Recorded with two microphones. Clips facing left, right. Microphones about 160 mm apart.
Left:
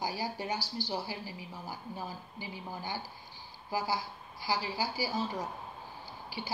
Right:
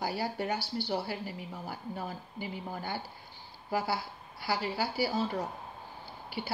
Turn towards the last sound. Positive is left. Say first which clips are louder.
# right 2 dB
turn(degrees=-60)  # may be behind; listen again after turning